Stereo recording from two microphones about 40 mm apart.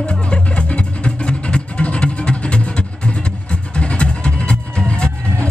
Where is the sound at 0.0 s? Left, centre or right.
Left.